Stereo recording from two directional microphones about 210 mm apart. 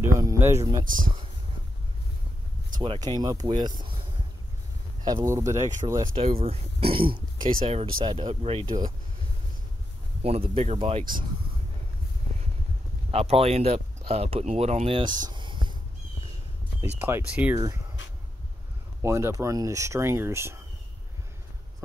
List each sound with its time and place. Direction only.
0.0 s speech: 15° right (ahead or behind)
0.8 s speech: 40° right (ahead or behind)
2.8 s speech: 20° right (ahead or behind)
5.0 s speech: 15° right (ahead or behind)
6.1 s speech: 30° right (ahead or behind)
10.2 s speech: 30° right (ahead or behind)
13.1 s speech: 30° right (ahead or behind)
17.0 s speech: 10° right (ahead or behind)
19.0 s speech: 15° right (ahead or behind)